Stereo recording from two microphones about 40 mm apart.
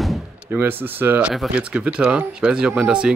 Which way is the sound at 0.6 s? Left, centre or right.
Right.